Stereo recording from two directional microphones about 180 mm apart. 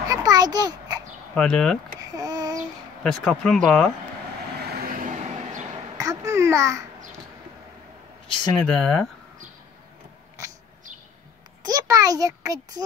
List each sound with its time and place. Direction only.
0.1 s a sound: 20° right (ahead or behind)
1.3 s speech: 5° left (ahead or behind)
2.0 s babbling: 20° right (ahead or behind)
2.6 s speech: 5° left (ahead or behind)
4.7 s vehicle: 50° right (ahead or behind)
5.9 s babbling: 20° right (ahead or behind)
8.6 s speech: 5° left (ahead or behind)
11.6 s a sound: 20° right (ahead or behind)